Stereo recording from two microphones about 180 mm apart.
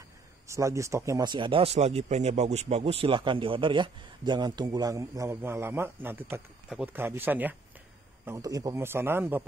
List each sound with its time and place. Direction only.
0.5 s a man's voice: 15° right (ahead or behind)